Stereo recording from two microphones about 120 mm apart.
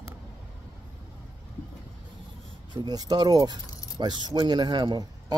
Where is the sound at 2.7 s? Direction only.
35° right (ahead or behind).